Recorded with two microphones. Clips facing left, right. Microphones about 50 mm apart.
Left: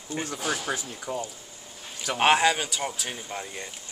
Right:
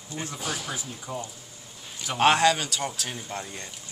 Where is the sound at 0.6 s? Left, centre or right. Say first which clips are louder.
Left 4 dB; left.